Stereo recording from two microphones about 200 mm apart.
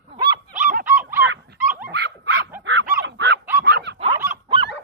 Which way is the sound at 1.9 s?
55° right (ahead or behind).